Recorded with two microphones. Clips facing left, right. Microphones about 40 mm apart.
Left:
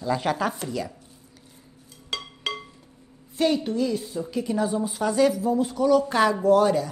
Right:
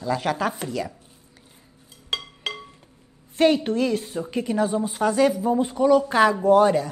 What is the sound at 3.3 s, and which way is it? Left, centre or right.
Speech, right.